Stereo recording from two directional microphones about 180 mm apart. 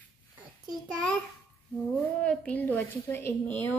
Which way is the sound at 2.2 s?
5° left (ahead or behind).